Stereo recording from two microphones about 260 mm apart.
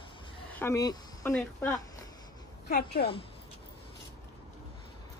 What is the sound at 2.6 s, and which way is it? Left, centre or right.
Speech, left.